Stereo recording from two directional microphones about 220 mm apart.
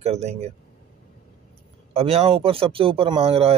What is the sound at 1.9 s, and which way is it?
Speech, 25° right (ahead or behind).